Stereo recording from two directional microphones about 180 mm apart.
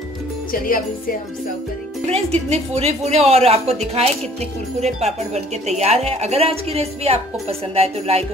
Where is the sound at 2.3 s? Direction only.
35° right (ahead or behind).